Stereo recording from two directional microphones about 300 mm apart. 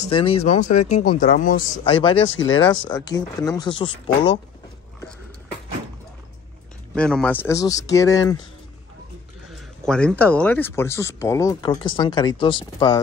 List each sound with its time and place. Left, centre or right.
0.0 s speech: centre
2.0 s speech: centre
7.0 s speech: centre
9.8 s speech: centre